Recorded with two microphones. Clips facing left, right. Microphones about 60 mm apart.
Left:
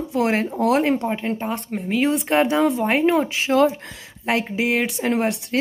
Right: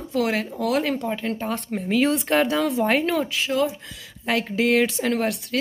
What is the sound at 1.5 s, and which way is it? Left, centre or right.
Speech, centre.